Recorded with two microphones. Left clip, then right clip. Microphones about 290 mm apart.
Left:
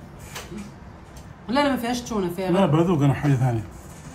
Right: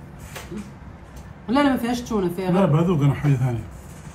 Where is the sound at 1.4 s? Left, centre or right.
Centre.